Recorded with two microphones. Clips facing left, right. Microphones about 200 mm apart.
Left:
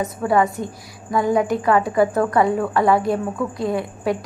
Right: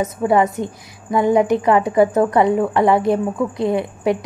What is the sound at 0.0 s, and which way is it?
A woman's voice, 20° right (ahead or behind).